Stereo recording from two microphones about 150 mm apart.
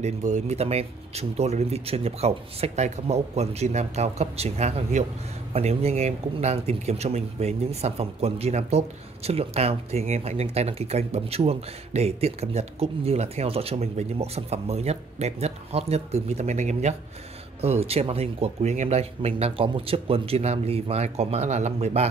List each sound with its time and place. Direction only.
0.0 s speech: 50° right (ahead or behind)